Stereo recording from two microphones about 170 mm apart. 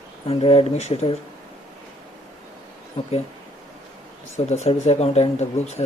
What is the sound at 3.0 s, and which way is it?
Speech, 35° left (ahead or behind).